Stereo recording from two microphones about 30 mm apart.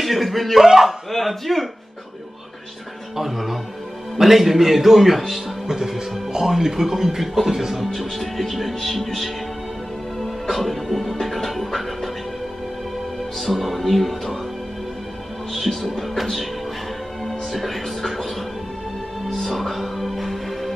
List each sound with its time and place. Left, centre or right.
0.0 s speech: centre
0.6 s speech: centre
1.1 s speech: centre
3.2 s speech: centre
7.8 s speech: centre
10.5 s music: centre
13.4 s speech: centre
15.5 s speech: centre
17.2 s music: centre